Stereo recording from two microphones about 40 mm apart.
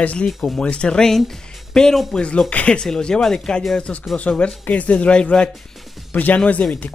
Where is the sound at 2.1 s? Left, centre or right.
Left.